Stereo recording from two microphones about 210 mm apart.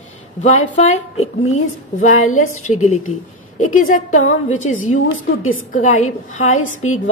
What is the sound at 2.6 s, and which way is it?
A woman's voice, 35° left (ahead or behind).